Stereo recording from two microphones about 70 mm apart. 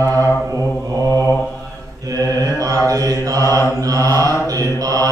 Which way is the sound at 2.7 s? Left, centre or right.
Right.